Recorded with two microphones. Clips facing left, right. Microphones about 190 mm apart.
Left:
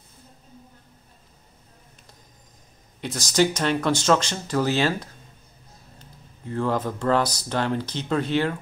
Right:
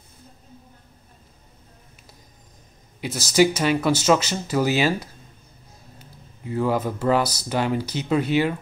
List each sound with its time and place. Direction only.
3.0 s speech: 5° right (ahead or behind)